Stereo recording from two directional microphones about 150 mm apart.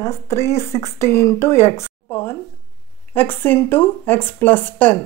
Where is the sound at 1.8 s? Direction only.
15° left (ahead or behind).